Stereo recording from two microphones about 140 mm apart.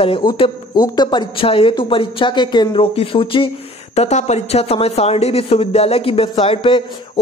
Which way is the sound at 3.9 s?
50° left (ahead or behind).